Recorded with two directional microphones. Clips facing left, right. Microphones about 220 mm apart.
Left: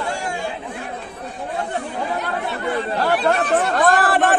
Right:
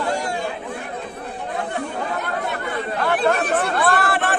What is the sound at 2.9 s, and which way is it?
Speech, 35° left (ahead or behind).